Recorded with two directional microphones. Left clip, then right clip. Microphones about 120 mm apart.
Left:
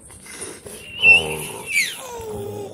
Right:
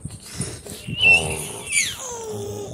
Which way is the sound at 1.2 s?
10° left (ahead or behind).